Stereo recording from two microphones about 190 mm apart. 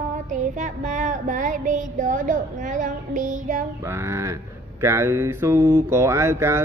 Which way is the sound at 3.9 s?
15° right (ahead or behind).